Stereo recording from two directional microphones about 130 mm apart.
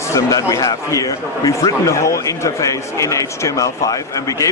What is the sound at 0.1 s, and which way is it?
Speech, 25° left (ahead or behind).